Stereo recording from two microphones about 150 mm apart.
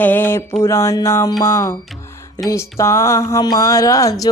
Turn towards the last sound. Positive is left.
turn(degrees=20)  # may be behind; listen again after turning